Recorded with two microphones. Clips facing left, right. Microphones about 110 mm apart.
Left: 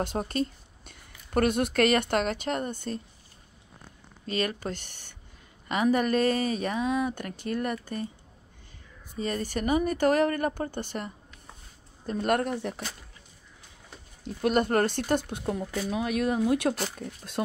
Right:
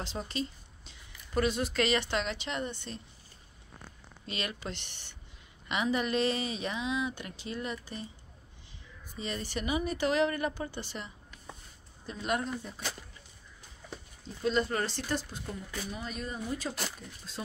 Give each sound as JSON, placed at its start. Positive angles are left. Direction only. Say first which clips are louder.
{"t": 0.0, "sound": "speech", "louder": "left 7 dB", "side_deg": 55}
{"t": 4.3, "sound": "speech", "louder": "left 8 dB", "side_deg": 40}
{"t": 9.2, "sound": "speech", "louder": "left 6 dB", "side_deg": 45}
{"t": 14.2, "sound": "speech", "louder": "left 5 dB", "side_deg": 60}